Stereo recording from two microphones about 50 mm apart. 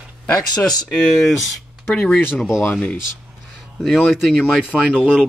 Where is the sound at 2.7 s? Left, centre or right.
Left.